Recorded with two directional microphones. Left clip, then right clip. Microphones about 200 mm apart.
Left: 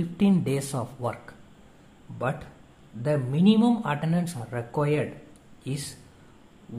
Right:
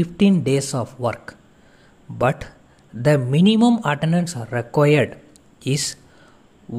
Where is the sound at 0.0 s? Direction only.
25° right (ahead or behind).